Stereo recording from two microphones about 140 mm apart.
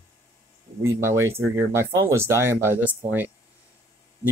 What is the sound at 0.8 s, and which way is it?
Speech, 20° right (ahead or behind).